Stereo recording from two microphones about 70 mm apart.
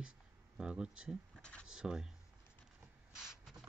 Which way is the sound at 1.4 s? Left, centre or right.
Centre.